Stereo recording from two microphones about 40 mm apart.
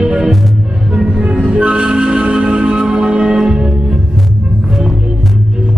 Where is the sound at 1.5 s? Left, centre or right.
Right.